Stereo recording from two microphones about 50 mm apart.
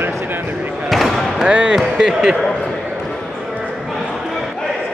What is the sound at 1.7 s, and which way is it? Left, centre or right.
Speech, centre.